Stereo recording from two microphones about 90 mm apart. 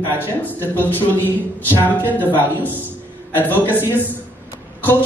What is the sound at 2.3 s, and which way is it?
A man's voice, 20° left (ahead or behind).